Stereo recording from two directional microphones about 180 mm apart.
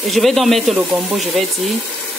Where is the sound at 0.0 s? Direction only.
Centre (ahead or behind).